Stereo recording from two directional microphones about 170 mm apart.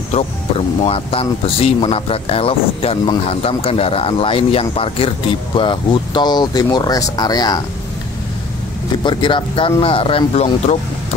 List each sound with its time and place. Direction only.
0.1 s speech: 35° left (ahead or behind)
9.0 s speech: 25° left (ahead or behind)